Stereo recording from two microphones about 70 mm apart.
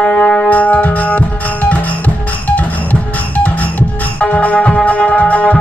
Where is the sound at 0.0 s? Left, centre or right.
Left.